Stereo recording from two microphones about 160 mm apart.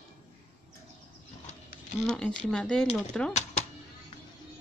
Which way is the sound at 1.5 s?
50° left (ahead or behind).